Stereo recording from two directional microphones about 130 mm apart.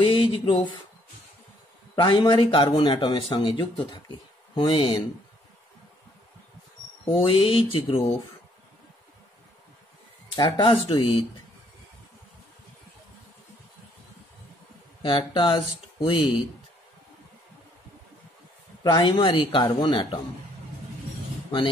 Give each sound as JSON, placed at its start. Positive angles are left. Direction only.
{"t": 0.0, "sound": "speech", "side_deg": 40}
{"t": 2.0, "sound": "speech", "side_deg": 40}
{"t": 7.2, "sound": "speech", "side_deg": 45}
{"t": 10.3, "sound": "speech", "side_deg": 30}
{"t": 10.7, "sound": "speech", "side_deg": 45}
{"t": 15.0, "sound": "speech", "side_deg": 40}
{"t": 18.9, "sound": "speech", "side_deg": 35}